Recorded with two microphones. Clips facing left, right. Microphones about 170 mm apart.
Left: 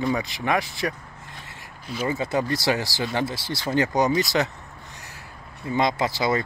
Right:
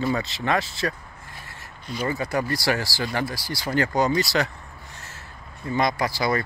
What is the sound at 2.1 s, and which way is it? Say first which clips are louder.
Speech: left 1 dB; 20° left (ahead or behind).